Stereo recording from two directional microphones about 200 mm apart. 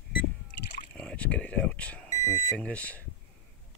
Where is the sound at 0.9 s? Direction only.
5° left (ahead or behind).